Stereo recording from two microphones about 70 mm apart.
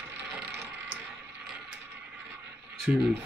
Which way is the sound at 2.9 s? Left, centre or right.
Centre.